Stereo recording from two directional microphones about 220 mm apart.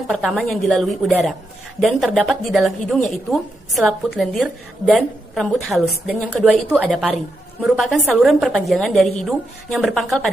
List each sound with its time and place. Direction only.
0.1 s a woman's voice: centre (ahead or behind)